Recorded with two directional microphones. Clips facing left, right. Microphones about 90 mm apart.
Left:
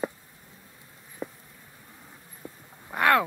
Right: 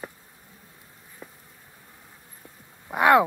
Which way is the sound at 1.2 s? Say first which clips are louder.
Left 9 dB; 15° left (ahead or behind).